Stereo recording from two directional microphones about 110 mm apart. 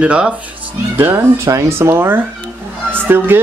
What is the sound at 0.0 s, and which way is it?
A woman's voice, 10° right (ahead or behind).